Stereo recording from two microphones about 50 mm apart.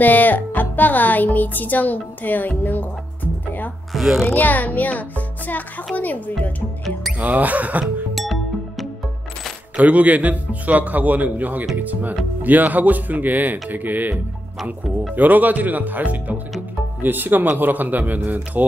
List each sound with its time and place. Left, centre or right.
0.0 s speech: left
3.9 s speech: centre
4.4 s speech: left
7.2 s speech: right
7.8 s music: centre
9.8 s speech: right
15.1 s speech: right